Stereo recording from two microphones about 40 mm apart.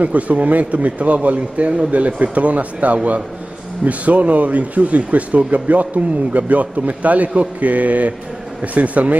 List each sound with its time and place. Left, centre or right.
0.0 s speech: right